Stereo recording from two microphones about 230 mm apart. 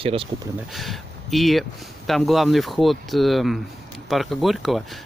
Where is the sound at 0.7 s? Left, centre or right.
Centre.